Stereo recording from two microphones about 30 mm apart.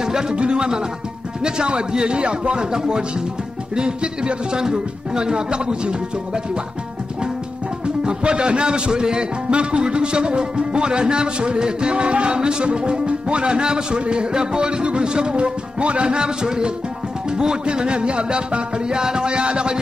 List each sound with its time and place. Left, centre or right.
0.0 s music: right
0.4 s a man's voice: right
7.8 s a man's voice: right
9.5 s a man's voice: right